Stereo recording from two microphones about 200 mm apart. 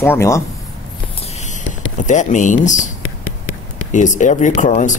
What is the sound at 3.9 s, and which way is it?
Speech, 40° left (ahead or behind).